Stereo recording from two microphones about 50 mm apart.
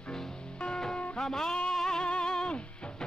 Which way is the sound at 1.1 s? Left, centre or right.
Centre.